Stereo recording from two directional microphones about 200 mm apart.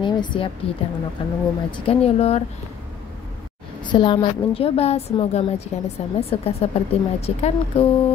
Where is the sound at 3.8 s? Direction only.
20° left (ahead or behind).